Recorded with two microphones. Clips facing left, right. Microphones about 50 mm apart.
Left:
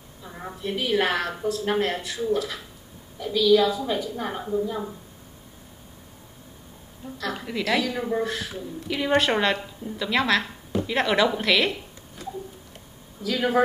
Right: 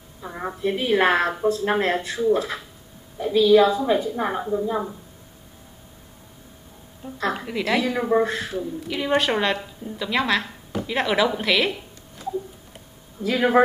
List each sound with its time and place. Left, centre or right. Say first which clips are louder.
0.2 s a woman's voice: right 8 dB; right
4.4 s a woman's voice: right 3 dB; centre
7.0 s a woman's voice: right 2 dB; right
7.5 s a woman's voice: right 2 dB; centre
7.8 s a woman's voice: right 5 dB; right
8.7 s a woman's voice: left 1 dB; centre
13.2 s a woman's voice: right 4 dB; right